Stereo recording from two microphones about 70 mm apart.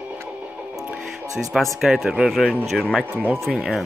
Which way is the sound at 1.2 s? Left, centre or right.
Right.